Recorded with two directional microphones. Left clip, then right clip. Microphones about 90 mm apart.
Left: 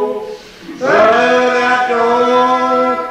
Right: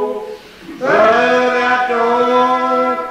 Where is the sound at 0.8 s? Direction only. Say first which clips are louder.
Left 1 dB; 30° right (ahead or behind).